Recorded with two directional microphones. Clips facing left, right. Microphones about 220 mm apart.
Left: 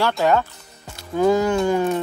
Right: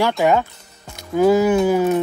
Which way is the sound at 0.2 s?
15° right (ahead or behind).